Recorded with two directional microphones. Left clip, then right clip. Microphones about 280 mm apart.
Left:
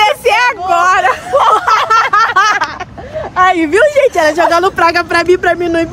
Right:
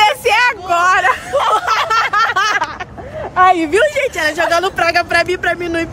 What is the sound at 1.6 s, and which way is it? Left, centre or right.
Snicker, centre.